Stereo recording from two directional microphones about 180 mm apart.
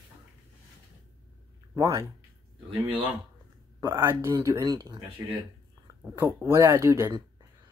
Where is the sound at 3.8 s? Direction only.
15° right (ahead or behind).